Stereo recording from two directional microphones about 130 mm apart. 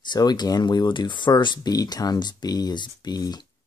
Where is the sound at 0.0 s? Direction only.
35° left (ahead or behind).